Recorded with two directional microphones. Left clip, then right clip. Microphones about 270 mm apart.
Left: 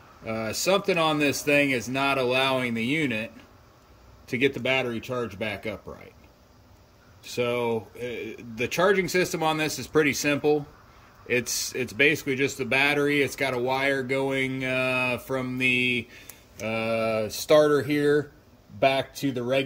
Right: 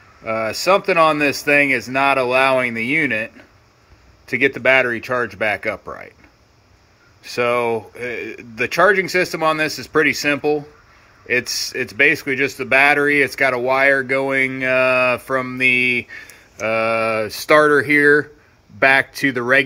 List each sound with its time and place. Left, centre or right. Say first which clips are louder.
0.2 s speech: right 9 dB; centre
4.3 s speech: right 10 dB; centre
7.2 s speech: right 8 dB; centre